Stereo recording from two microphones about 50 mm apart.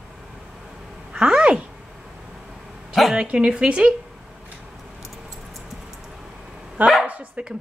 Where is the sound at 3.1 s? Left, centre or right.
Centre.